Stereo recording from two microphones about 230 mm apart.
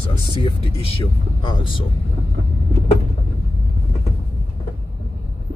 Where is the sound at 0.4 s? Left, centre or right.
Left.